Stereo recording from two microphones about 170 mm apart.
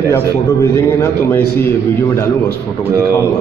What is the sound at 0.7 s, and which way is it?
Speech, 15° left (ahead or behind).